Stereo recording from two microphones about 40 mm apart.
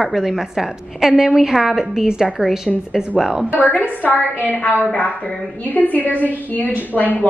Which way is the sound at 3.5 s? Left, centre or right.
Left.